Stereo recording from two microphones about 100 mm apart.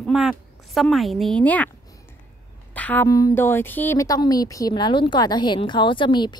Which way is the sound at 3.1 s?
35° left (ahead or behind).